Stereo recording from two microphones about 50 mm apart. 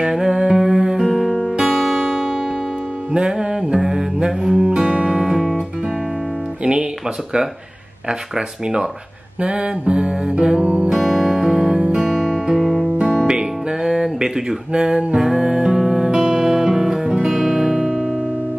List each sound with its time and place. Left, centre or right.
0.0 s music: centre
2.0 s music: centre
6.6 s guitar: centre
8.1 s speech: centre
9.4 s music: right
10.9 s music: centre
12.0 s guitar: centre
13.3 s music: centre